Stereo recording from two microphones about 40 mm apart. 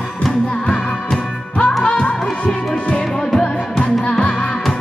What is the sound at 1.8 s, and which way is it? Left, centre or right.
Music, left.